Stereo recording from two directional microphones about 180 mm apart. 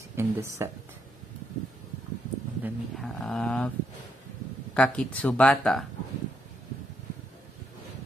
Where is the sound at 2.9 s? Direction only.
Centre (ahead or behind).